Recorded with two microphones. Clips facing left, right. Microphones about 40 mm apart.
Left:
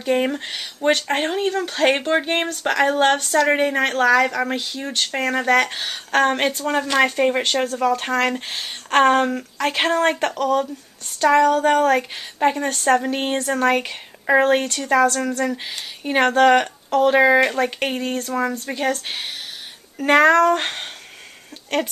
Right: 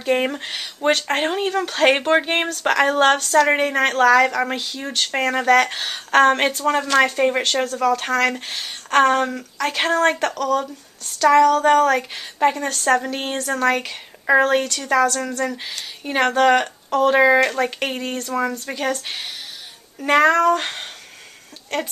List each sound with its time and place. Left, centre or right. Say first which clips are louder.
0.0 s speech: even; centre
7.6 s speech: even; centre
10.3 s speech: left 1 dB; left
11.2 s speech: right 2 dB; centre